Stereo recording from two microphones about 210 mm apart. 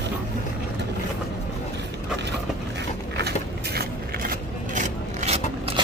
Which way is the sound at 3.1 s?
50° right (ahead or behind).